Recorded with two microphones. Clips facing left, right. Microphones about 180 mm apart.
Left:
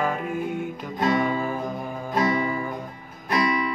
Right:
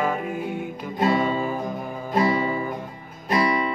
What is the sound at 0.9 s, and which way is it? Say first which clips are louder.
Music: right 1 dB; 20° right (ahead or behind).